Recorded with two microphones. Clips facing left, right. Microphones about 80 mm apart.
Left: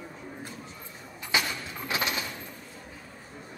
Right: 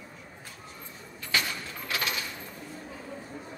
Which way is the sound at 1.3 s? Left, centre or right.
Centre.